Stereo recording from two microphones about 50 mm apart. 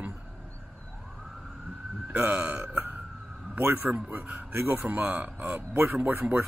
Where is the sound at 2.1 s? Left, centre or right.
Right.